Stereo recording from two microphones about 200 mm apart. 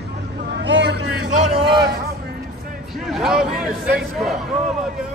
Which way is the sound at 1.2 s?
35° right (ahead or behind).